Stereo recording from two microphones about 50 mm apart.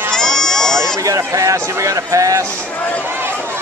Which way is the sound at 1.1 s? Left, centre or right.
Right.